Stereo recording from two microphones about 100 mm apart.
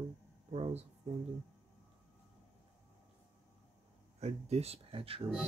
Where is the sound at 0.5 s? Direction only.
90° right.